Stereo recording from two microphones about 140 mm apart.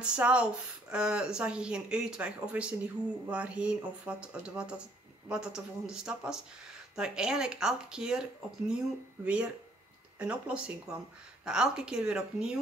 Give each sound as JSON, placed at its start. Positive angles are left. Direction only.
{"t": 0.0, "sound": "speech", "side_deg": -10}